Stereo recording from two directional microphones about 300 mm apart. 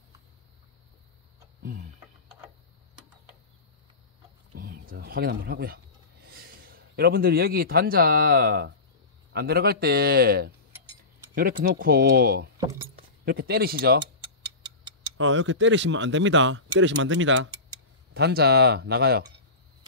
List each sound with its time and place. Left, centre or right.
1.6 s tick-tock: right
4.6 s a man's voice: right
12.5 s speech: centre
13.2 s speech: right
15.1 s speech: right